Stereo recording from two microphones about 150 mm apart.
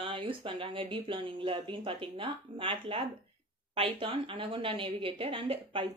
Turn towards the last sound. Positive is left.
turn(degrees=-35)  # may be behind; listen again after turning